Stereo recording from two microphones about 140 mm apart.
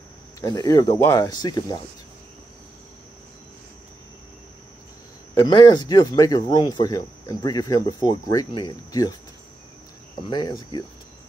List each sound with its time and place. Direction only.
0.4 s speech: 25° left (ahead or behind)
5.3 s speech: 30° left (ahead or behind)
10.3 s cricket: 30° left (ahead or behind)